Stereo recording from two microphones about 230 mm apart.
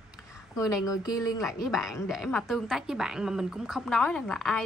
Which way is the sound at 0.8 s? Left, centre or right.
Centre.